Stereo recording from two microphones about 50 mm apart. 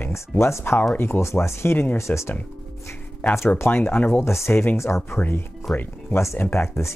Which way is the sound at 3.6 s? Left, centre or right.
Left.